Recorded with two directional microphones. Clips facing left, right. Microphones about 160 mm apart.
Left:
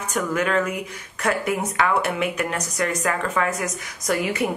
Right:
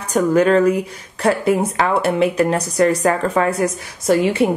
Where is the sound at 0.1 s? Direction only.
35° right (ahead or behind).